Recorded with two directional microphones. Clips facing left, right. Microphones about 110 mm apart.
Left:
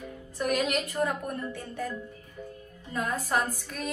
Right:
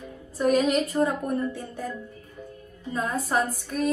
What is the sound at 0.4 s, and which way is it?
Speech, 35° right (ahead or behind).